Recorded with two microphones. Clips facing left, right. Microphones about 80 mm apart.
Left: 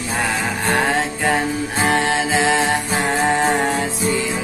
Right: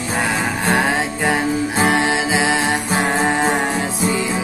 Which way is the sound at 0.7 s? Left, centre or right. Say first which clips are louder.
Right 1 dB; centre.